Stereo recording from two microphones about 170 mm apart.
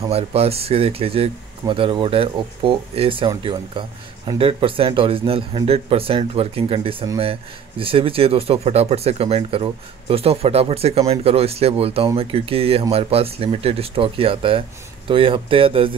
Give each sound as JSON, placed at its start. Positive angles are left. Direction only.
{"t": 0.1, "sound": "speech", "side_deg": -35}